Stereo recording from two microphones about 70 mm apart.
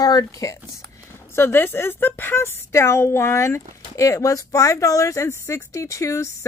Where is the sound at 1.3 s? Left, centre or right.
Left.